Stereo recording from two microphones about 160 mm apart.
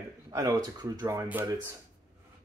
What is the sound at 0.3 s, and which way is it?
Speech, 25° right (ahead or behind).